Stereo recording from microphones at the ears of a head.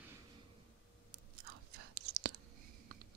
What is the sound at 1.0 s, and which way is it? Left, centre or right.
Whispering, right.